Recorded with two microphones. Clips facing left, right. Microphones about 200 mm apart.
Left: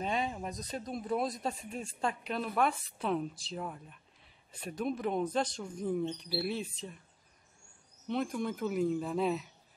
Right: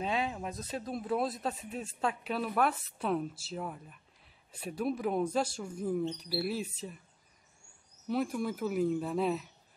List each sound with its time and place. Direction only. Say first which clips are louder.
0.0 s speech: right 1 dB; centre (ahead or behind)
8.1 s speech: right 1 dB; 5° right (ahead or behind)